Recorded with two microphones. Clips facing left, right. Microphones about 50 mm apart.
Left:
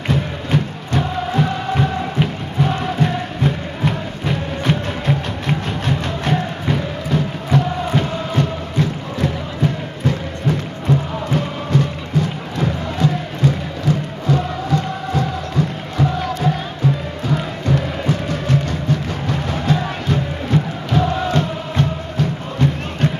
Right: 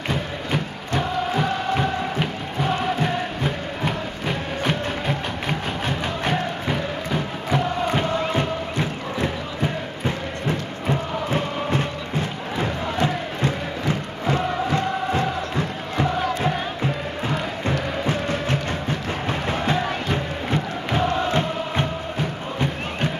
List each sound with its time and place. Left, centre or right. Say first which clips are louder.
0.1 s music: left 6 dB; centre
11.3 s music: left 5 dB; right
18.0 s music: left 2 dB; right